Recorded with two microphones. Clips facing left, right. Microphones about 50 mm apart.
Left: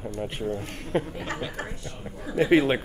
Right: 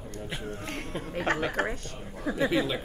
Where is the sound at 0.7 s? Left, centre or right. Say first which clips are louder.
Left 6 dB; right.